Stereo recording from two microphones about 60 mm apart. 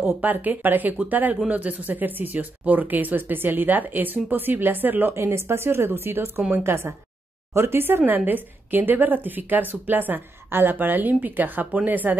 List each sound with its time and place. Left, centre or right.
0.0 s a woman's voice: right
5.1 s a woman's voice: right